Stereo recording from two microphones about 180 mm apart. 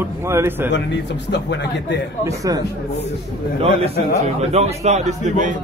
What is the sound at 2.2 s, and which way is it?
Speech, 20° right (ahead or behind).